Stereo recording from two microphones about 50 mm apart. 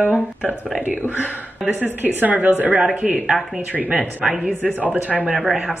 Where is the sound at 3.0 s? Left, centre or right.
Centre.